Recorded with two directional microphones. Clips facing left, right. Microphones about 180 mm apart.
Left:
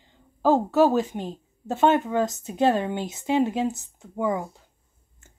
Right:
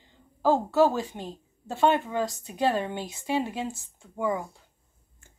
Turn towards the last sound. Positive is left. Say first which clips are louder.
# left 3 dB
turn(degrees=20)  # may be behind; listen again after turning